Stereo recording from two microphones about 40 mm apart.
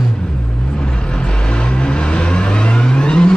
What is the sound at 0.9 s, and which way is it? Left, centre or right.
Vehicle, left.